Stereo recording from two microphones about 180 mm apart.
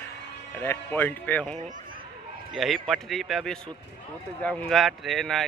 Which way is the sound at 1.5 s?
45° right (ahead or behind).